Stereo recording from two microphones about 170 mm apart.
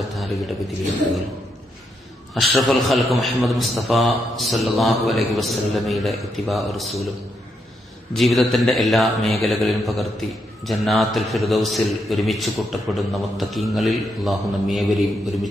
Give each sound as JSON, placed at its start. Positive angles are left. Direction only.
{"t": 0.1, "sound": "a sound", "side_deg": 0}
{"t": 2.5, "sound": "a man's voice", "side_deg": 0}
{"t": 8.1, "sound": "a man's voice", "side_deg": 0}